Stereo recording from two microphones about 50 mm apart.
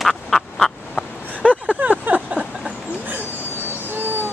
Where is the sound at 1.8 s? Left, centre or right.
Right.